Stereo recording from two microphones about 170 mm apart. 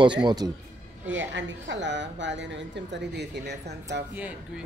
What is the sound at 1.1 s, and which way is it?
A woman's voice, 90° right.